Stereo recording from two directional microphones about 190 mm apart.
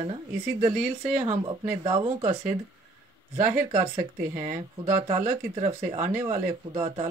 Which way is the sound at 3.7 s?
35° right (ahead or behind).